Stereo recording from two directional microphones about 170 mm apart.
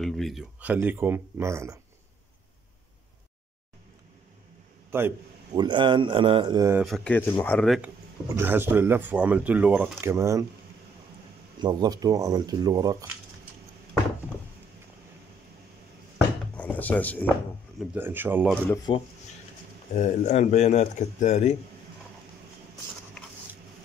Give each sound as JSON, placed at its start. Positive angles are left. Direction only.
{"t": 0.0, "sound": "speech", "side_deg": 0}
{"t": 4.9, "sound": "a man's voice", "side_deg": -15}
{"t": 5.6, "sound": "speech", "side_deg": -30}
{"t": 6.7, "sound": "speech", "side_deg": -5}
{"t": 7.1, "sound": "speech", "side_deg": 10}
{"t": 8.3, "sound": "speech", "side_deg": -15}
{"t": 11.6, "sound": "speech", "side_deg": -25}
{"t": 16.5, "sound": "speech", "side_deg": 10}
{"t": 17.9, "sound": "speech", "side_deg": -10}
{"t": 18.9, "sound": "speech", "side_deg": 25}
{"t": 20.0, "sound": "speech", "side_deg": 45}